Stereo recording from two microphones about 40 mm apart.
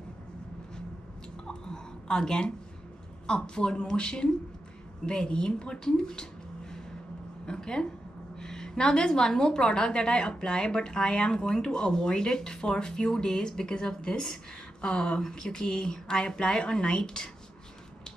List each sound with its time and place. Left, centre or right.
1.5 s a sound: centre
3.3 s a woman's voice: left
7.4 s a woman's voice: centre